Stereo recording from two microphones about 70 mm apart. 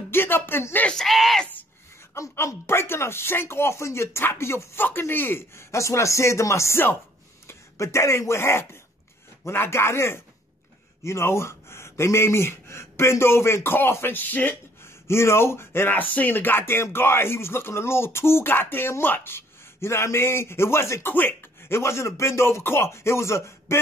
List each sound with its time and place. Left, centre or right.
0.1 s speech: left
0.8 s speech: centre
2.1 s speech: left
14.8 s speech: left
21.1 s speech: left